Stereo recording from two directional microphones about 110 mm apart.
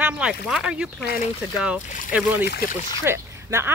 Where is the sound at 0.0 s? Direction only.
10° right (ahead or behind).